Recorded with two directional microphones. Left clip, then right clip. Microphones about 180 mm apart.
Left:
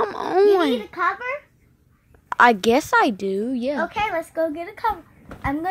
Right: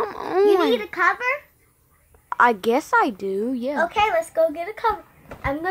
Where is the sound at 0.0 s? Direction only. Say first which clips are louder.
Left 2 dB; 10° left (ahead or behind).